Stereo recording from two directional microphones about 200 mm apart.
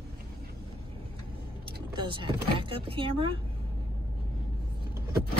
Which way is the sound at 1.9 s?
25° right (ahead or behind).